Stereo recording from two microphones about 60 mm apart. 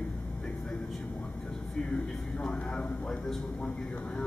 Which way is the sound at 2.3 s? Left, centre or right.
Centre.